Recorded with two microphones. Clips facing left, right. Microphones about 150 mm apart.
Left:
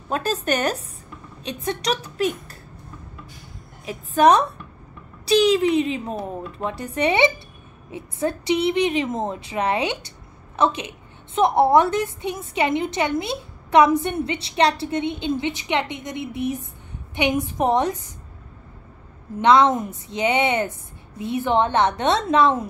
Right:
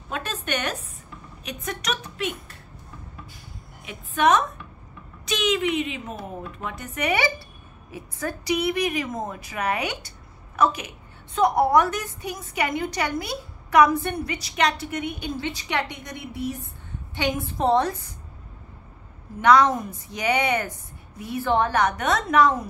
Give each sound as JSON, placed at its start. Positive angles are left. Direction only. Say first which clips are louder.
{"t": 0.1, "sound": "speech", "louder": "left 6 dB", "side_deg": 35}
{"t": 3.8, "sound": "a woman's voice", "louder": "left 5 dB", "side_deg": 35}
{"t": 19.4, "sound": "a woman's voice", "louder": "left 2 dB", "side_deg": 25}